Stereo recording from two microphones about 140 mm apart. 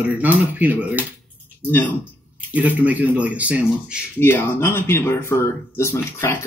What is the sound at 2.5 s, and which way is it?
Speech, 10° right (ahead or behind).